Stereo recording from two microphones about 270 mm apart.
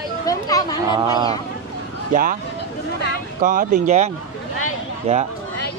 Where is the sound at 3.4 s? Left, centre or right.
Right.